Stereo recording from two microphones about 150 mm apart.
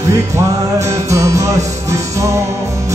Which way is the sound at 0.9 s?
20° right (ahead or behind).